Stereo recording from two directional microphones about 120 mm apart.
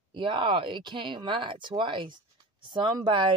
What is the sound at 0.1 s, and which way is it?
Speech, 40° right (ahead or behind).